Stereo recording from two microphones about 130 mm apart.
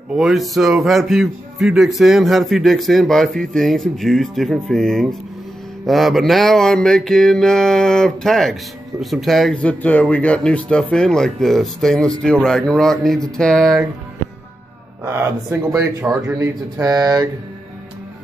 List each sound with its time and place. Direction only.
0.1 s speech: centre (ahead or behind)
15.0 s speech: 20° right (ahead or behind)